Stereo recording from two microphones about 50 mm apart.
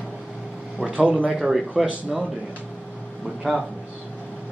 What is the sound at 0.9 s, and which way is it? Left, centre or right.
Speech, right.